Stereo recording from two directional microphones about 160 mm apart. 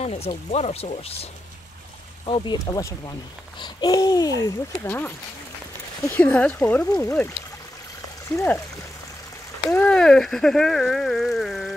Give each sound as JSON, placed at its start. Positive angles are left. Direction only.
{"t": 0.0, "sound": "speech", "side_deg": 40}
{"t": 4.7, "sound": "speech", "side_deg": 10}
{"t": 8.4, "sound": "speech", "side_deg": 20}
{"t": 9.7, "sound": "speech", "side_deg": 5}